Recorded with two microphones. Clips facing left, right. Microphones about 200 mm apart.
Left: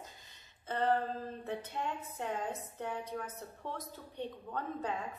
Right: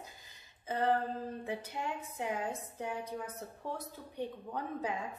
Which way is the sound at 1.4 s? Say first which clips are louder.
Even; 10° right (ahead or behind).